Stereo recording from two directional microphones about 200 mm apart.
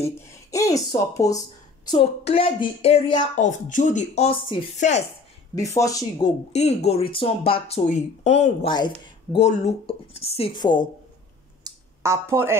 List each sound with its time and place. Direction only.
0.0 s speech: 15° left (ahead or behind)
1.9 s speech: 25° left (ahead or behind)
3.3 s speech: 40° left (ahead or behind)
5.8 s speech: 15° left (ahead or behind)
6.5 s speech: 30° left (ahead or behind)
8.7 s speech: 20° left (ahead or behind)
11.6 s a sound: 15° right (ahead or behind)